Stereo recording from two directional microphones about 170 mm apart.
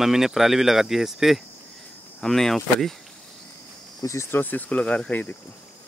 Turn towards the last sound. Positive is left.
turn(degrees=10)  # may be behind; listen again after turning